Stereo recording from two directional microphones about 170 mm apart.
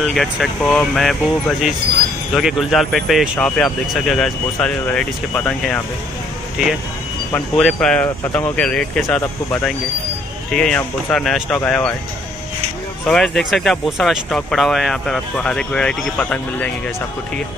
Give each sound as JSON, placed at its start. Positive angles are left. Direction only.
{"t": 0.0, "sound": "speech", "side_deg": 0}
{"t": 13.0, "sound": "speech", "side_deg": 5}